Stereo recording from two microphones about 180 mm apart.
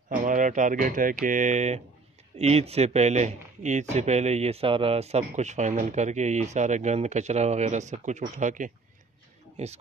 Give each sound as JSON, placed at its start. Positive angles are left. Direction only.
{"t": 0.1, "sound": "speech", "side_deg": -45}